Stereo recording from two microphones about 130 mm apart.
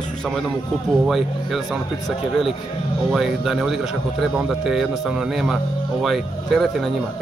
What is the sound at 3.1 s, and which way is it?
Speech, centre (ahead or behind).